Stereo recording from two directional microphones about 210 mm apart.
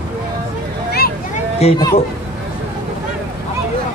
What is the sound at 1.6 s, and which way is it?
Speech, 30° left (ahead or behind).